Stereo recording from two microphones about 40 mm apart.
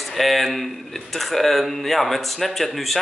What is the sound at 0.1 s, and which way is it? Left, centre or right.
Speech, centre.